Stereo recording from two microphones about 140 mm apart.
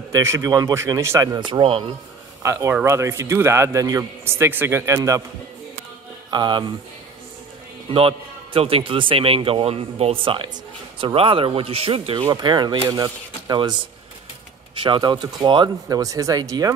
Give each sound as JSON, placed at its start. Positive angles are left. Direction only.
{"t": 0.1, "sound": "a man's voice", "side_deg": -20}
{"t": 2.4, "sound": "a man's voice", "side_deg": -20}
{"t": 6.3, "sound": "speech", "side_deg": -30}
{"t": 7.9, "sound": "speech", "side_deg": -40}
{"t": 12.3, "sound": "a man's voice", "side_deg": -30}
{"t": 14.8, "sound": "a man's voice", "side_deg": -35}